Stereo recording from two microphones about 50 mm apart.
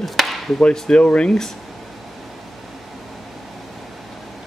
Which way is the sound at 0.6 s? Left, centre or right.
Centre.